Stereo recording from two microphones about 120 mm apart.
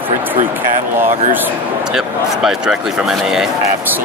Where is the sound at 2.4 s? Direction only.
5° right (ahead or behind).